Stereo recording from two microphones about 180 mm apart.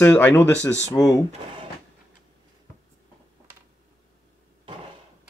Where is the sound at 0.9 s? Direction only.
20° left (ahead or behind).